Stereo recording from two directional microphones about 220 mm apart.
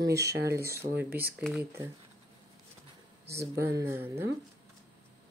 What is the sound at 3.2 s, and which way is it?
Speech, 10° right (ahead or behind).